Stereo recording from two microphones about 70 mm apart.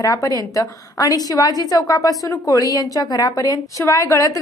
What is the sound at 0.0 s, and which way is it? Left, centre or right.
A woman's voice, left.